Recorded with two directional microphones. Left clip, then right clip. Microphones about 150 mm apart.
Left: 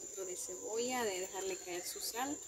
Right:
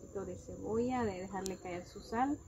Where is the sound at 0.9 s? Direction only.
15° left (ahead or behind).